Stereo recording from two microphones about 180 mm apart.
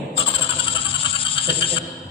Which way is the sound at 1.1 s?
30° left (ahead or behind).